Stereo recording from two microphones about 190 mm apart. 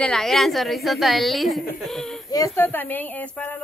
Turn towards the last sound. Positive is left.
turn(degrees=10)  # may be behind; listen again after turning